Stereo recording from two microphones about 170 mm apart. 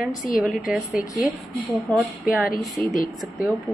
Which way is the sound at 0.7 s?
5° right (ahead or behind).